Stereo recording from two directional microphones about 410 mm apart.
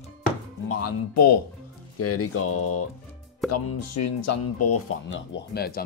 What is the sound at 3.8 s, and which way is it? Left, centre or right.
Speech, left.